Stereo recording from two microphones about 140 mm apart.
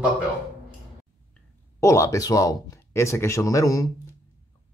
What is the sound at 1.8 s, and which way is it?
Speech, 20° left (ahead or behind).